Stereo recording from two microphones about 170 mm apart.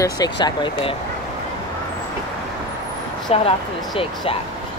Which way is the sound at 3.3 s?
35° left (ahead or behind).